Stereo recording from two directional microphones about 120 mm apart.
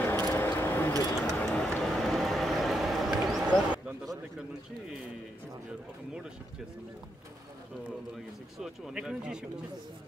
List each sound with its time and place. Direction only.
0.0 s a sound: 20° left (ahead or behind)
1.4 s vehicle: 10° left (ahead or behind); by 3.8 s 5° right (ahead or behind)
8.5 s speech: 5° right (ahead or behind)